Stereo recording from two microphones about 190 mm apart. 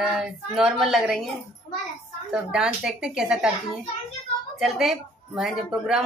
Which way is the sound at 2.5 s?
5° right (ahead or behind).